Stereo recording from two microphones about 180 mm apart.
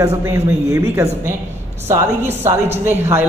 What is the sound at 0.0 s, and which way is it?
Speech, 15° right (ahead or behind).